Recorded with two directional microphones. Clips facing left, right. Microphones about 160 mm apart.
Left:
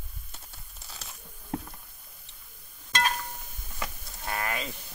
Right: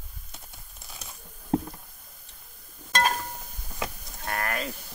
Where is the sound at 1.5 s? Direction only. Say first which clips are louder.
Right 8 dB; 30° right (ahead or behind).